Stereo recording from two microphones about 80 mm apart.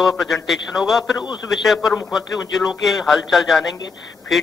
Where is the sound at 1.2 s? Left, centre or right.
Left.